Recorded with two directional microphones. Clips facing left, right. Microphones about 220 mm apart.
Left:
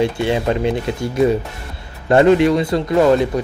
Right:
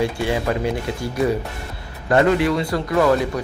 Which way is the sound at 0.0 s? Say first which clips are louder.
Left 4 dB; 25° left (ahead or behind).